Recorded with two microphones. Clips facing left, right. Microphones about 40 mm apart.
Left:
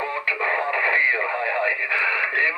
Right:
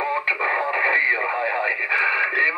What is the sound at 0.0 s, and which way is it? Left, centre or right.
Radio, centre.